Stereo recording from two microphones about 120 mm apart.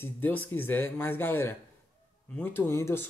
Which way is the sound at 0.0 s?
15° left (ahead or behind).